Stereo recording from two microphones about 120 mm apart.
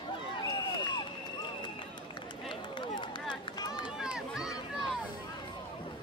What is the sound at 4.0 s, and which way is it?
Run, 5° right (ahead or behind).